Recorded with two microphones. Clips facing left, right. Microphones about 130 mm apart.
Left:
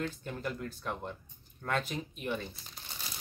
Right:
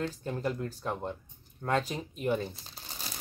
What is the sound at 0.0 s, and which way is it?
Speech, 30° right (ahead or behind).